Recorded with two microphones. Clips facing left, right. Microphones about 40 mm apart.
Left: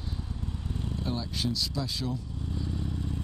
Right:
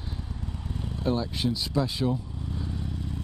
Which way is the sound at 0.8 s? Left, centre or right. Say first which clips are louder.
Right 7 dB; centre.